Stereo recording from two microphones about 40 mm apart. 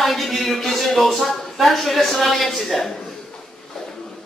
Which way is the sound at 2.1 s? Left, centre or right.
Centre.